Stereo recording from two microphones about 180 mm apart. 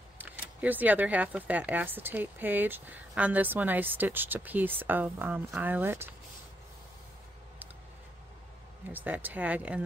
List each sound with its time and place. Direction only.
0.2 s speech: 10° right (ahead or behind)
8.9 s speech: 10° right (ahead or behind)